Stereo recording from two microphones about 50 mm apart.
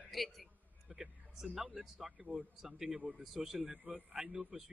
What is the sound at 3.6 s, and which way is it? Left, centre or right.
A man's voice, right.